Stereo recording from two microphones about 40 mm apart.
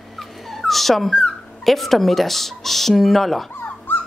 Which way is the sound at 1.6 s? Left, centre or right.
Centre.